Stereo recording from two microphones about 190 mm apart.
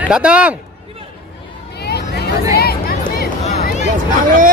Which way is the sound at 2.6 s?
55° left (ahead or behind).